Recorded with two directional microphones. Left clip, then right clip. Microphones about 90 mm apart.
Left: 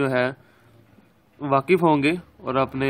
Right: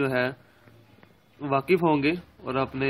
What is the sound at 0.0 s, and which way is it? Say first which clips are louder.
Speech: left 4 dB; 15° left (ahead or behind).